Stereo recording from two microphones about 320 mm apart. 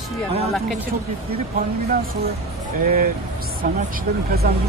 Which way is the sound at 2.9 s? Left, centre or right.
Right.